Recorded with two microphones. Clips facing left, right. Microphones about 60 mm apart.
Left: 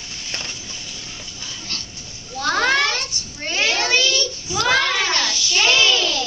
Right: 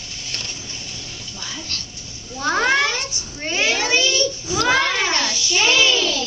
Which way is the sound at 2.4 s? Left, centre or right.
Centre.